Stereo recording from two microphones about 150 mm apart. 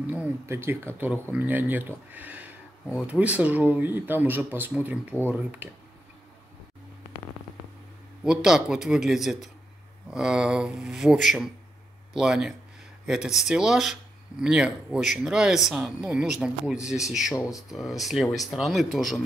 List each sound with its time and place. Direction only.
0.0 s speech: 10° right (ahead or behind)
5.1 s speech: 15° left (ahead or behind)
5.6 s speech: 10° right (ahead or behind)
8.5 s speech: 5° right (ahead or behind)